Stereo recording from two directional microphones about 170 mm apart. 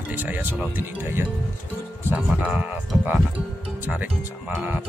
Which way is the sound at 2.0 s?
10° right (ahead or behind).